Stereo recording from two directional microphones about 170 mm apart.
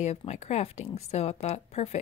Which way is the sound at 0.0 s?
40° left (ahead or behind).